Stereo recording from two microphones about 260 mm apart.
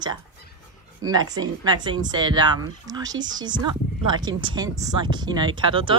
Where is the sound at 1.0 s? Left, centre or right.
Centre.